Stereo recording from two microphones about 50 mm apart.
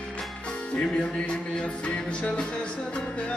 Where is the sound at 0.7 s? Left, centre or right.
Centre.